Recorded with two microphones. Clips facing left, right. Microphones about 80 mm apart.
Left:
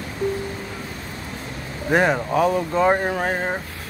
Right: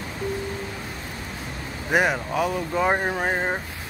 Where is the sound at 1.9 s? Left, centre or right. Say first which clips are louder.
Left 3 dB; centre.